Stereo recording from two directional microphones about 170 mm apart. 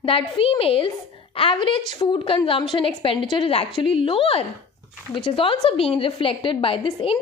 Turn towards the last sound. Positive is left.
turn(degrees=35)  # may be behind; listen again after turning